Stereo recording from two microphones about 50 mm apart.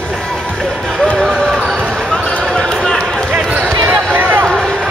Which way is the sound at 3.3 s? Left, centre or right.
Right.